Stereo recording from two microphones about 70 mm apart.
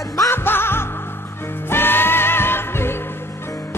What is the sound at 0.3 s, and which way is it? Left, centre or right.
Music, left.